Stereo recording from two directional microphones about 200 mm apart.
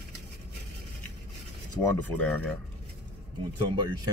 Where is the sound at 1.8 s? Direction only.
5° left (ahead or behind).